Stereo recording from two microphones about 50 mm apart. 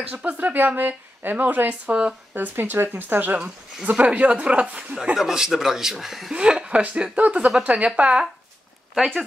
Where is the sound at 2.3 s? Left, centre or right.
Right.